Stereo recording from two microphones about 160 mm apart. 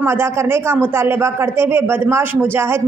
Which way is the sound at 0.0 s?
15° right (ahead or behind).